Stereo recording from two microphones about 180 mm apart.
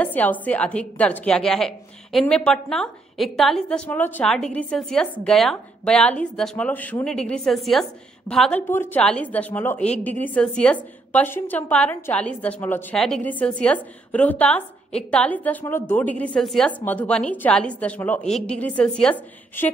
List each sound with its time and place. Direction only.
0.0 s a woman's voice: 10° left (ahead or behind)